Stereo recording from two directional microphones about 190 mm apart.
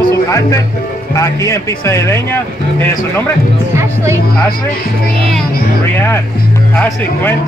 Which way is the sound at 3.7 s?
15° right (ahead or behind).